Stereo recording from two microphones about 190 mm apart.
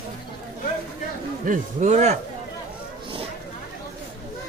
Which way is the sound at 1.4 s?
40° right (ahead or behind).